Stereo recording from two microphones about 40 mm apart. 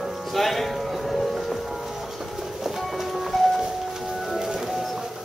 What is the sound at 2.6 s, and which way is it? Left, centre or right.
Train, centre.